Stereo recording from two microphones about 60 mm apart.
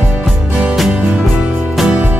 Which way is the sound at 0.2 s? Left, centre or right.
Centre.